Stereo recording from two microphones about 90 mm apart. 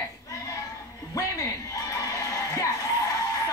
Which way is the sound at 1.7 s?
40° left (ahead or behind).